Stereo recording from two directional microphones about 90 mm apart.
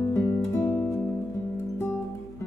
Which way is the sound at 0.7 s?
25° left (ahead or behind).